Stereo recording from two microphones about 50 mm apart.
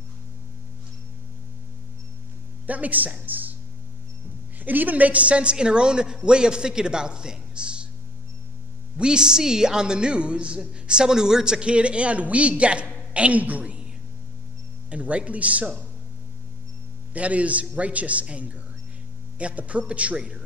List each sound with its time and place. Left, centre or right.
2.6 s speech: right
4.6 s a woman's voice: right; by 7.9 s centre
8.9 s speech: centre
14.9 s speech: right
17.1 s speech: right
20.2 s a woman's voice: centre